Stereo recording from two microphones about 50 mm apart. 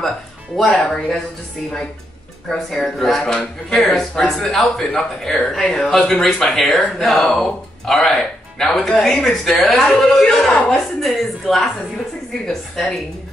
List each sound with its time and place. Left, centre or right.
0.7 s speech: centre
2.5 s speech: centre
3.7 s speech: centre